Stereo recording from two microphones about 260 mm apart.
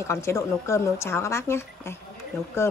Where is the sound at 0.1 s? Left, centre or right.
Centre.